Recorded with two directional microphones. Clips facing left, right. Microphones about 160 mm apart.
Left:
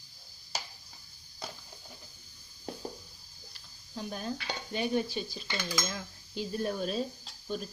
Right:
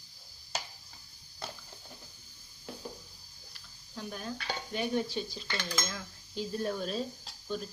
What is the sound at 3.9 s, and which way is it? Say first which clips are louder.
Cutlery: left 3 dB; 25° left (ahead or behind).